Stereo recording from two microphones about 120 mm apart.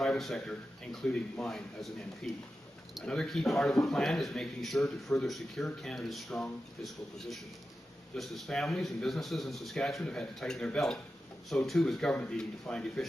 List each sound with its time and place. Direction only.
0.0 s a man's voice: centre (ahead or behind)